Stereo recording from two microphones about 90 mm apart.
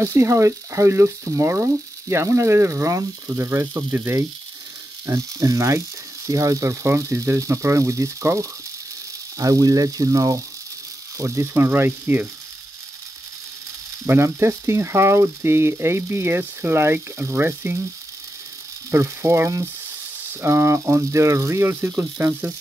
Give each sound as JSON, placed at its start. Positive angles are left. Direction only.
{"t": 0.0, "sound": "speech", "side_deg": -30}
{"t": 14.0, "sound": "speech", "side_deg": -30}
{"t": 18.9, "sound": "speech", "side_deg": -30}